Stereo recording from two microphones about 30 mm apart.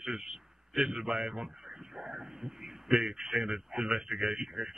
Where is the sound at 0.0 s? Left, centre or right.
Centre.